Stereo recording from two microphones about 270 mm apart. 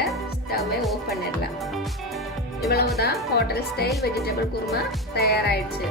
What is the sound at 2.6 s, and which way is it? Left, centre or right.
Speech, left.